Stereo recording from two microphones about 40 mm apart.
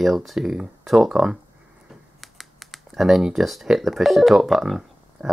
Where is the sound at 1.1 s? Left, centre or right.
Centre.